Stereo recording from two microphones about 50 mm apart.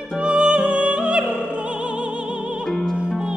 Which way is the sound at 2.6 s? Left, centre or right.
Centre.